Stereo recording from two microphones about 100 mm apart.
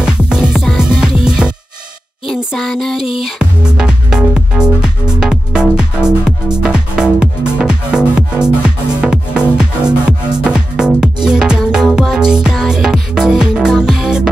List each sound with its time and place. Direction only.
0.0 s music: 10° right (ahead or behind)
2.5 s music: centre (ahead or behind)
3.0 s music: 70° left (ahead or behind)
3.3 s music: 5° right (ahead or behind)